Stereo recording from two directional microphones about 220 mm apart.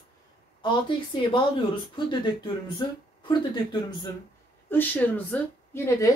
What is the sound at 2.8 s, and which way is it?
Speech, 20° left (ahead or behind).